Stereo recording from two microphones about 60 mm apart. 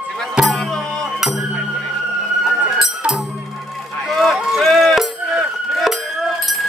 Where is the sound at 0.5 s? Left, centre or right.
Centre.